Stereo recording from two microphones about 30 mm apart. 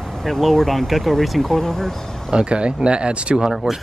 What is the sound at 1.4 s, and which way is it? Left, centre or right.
Speech, centre.